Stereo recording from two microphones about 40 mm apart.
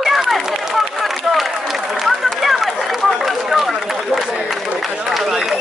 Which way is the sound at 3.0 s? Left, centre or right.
Centre.